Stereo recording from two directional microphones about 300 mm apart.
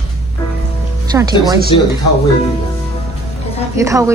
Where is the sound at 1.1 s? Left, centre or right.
Centre.